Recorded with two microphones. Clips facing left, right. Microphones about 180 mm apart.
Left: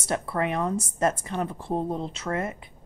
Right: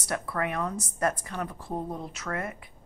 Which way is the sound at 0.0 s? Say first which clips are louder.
Left 4 dB; 25° left (ahead or behind).